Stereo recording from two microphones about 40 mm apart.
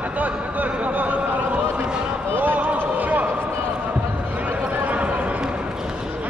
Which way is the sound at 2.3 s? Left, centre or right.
Right.